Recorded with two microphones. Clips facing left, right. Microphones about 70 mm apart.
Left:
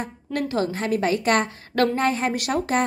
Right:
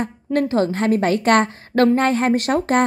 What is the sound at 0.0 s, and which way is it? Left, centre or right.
A woman's voice, right.